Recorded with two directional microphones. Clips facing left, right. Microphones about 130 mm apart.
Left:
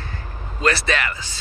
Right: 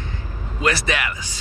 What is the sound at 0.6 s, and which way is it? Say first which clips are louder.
Speech: left 1 dB; 15° right (ahead or behind).